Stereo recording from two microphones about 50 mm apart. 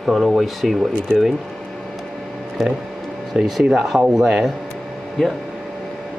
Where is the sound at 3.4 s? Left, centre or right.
Centre.